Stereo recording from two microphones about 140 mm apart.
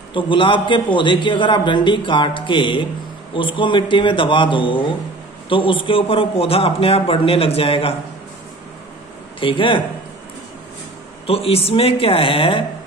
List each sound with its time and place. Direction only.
0.1 s a man's voice: 35° left (ahead or behind)
9.4 s a man's voice: 35° left (ahead or behind)
11.2 s speech: 45° left (ahead or behind)